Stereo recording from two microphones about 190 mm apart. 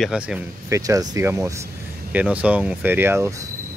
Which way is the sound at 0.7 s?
20° right (ahead or behind).